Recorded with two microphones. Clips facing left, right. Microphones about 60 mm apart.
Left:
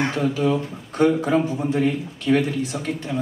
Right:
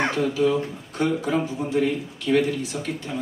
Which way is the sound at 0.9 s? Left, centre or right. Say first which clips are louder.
Left 5 dB; left.